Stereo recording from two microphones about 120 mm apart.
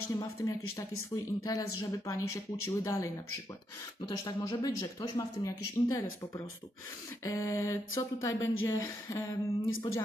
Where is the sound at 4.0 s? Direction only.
40° left (ahead or behind).